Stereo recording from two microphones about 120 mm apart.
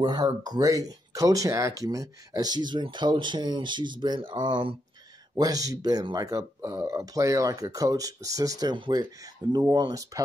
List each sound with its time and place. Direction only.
0.0 s speech: 35° right (ahead or behind)
5.4 s speech: 30° right (ahead or behind)